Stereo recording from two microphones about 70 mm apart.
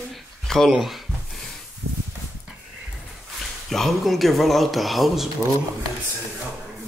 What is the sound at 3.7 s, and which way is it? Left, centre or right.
Speech, centre.